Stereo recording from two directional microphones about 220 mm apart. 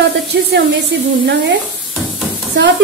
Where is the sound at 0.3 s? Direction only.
55° right (ahead or behind).